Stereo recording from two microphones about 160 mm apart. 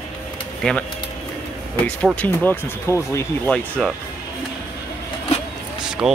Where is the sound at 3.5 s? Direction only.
5° left (ahead or behind).